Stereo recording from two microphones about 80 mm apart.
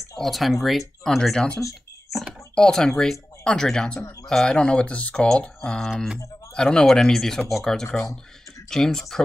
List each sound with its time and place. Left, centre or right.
0.2 s speech: centre
4.0 s speech: left
4.3 s speech: centre